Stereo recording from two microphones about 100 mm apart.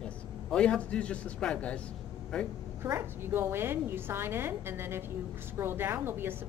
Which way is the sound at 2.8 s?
25° right (ahead or behind).